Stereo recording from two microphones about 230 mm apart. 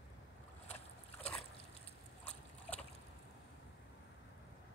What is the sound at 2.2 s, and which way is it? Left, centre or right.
Boat, centre.